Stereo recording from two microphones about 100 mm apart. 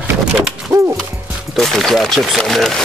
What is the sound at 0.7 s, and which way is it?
Speech, 25° right (ahead or behind).